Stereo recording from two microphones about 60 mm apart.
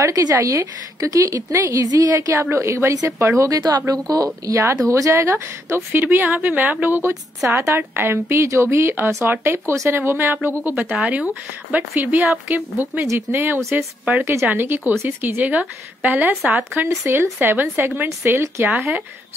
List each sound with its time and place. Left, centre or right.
0.0 s a woman's voice: right
2.1 s speech: right
3.3 s a woman's voice: right
4.5 s speech: right
5.9 s speech: right
11.0 s speech: right